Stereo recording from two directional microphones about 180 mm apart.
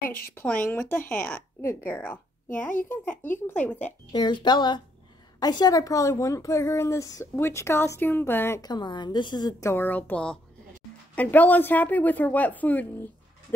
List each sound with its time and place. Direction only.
0.3 s a woman's voice: 10° left (ahead or behind)
4.1 s a woman's voice: 25° left (ahead or behind); by 13.1 s 10° left (ahead or behind)